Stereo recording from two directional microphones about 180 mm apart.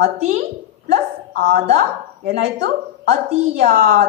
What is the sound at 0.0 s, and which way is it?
A woman's voice, 40° right (ahead or behind).